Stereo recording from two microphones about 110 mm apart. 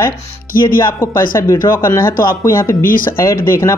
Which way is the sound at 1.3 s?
25° left (ahead or behind).